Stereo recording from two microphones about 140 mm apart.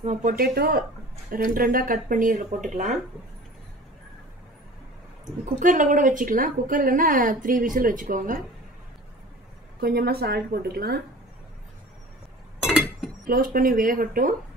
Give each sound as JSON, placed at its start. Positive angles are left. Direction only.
{"t": 0.0, "sound": "speech", "side_deg": -50}
{"t": 0.3, "sound": "a woman's voice", "side_deg": -90}
{"t": 5.4, "sound": "a woman's voice", "side_deg": -65}
{"t": 9.8, "sound": "a woman's voice", "side_deg": -90}
{"t": 13.3, "sound": "speech", "side_deg": -90}